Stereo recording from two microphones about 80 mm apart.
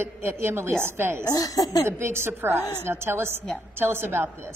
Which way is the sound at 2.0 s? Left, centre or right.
Right.